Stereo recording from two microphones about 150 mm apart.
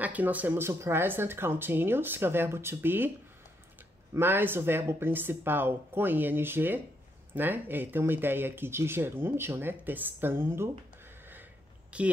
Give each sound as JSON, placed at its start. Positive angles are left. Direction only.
{"t": 0.0, "sound": "speech", "side_deg": -10}
{"t": 4.1, "sound": "speech", "side_deg": -15}
{"t": 11.9, "sound": "speech", "side_deg": -10}